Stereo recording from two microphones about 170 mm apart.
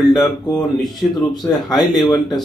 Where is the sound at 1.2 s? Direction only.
20° left (ahead or behind).